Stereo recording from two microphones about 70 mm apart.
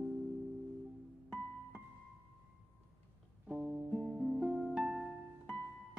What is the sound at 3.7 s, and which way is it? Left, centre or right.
Music, centre.